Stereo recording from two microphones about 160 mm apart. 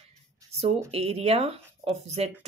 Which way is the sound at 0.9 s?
40° right (ahead or behind).